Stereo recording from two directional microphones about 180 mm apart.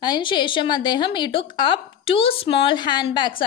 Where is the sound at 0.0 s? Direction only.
25° left (ahead or behind).